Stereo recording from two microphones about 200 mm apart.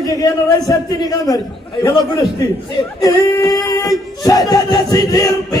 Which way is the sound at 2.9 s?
15° left (ahead or behind).